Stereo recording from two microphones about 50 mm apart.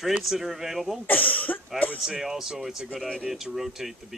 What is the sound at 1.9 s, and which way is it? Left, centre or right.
Speech, centre.